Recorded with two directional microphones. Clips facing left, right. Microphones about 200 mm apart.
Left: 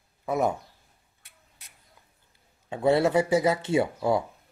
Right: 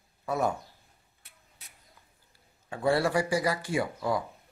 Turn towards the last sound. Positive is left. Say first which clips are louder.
# left 5 dB
turn(degrees=25)  # may be behind; listen again after turning